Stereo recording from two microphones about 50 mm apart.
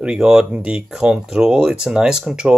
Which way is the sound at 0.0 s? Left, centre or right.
Centre.